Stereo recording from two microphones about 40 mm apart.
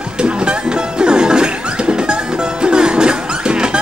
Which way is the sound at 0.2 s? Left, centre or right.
Right.